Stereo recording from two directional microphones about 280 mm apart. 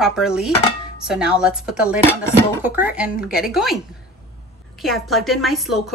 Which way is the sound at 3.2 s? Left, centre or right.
Left.